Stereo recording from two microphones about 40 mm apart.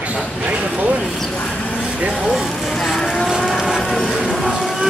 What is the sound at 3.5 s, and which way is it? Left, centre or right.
Vehicle, centre.